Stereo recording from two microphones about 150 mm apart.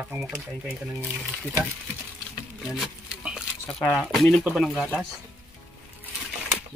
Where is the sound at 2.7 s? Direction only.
5° right (ahead or behind).